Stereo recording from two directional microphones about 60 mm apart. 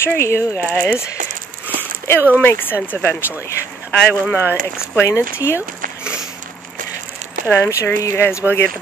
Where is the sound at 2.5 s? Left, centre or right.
Left.